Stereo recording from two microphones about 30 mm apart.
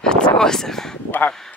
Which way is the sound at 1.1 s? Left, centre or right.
Left.